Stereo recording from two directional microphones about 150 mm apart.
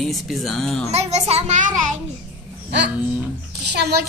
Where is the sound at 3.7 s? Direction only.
90° right.